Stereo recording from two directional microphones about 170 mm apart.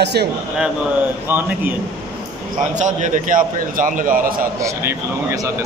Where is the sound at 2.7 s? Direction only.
45° right (ahead or behind).